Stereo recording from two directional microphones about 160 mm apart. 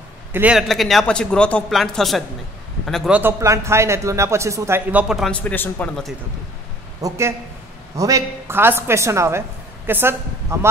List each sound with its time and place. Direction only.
0.3 s a man's voice: 10° right (ahead or behind)
3.2 s speech: 15° right (ahead or behind)
5.0 s a man's voice: centre (ahead or behind)
7.0 s speech: 15° right (ahead or behind)